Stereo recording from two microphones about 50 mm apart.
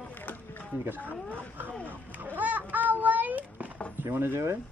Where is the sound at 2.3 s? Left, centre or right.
Right.